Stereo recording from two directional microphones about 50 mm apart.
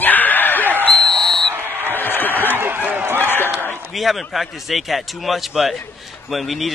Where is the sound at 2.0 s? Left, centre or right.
Left.